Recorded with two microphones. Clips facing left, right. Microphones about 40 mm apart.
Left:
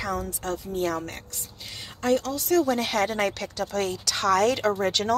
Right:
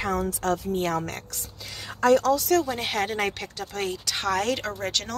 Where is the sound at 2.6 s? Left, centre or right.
Centre.